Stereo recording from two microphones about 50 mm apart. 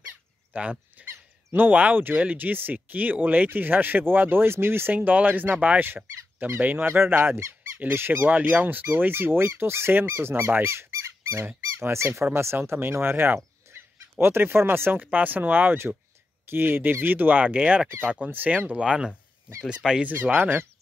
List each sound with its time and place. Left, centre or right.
0.5 s speech: right
4.9 s speech: right
6.9 s speech: right
15.0 s speech: right
18.7 s speech: centre
20.1 s speech: right